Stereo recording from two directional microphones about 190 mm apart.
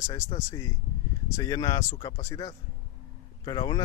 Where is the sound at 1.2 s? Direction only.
20° left (ahead or behind).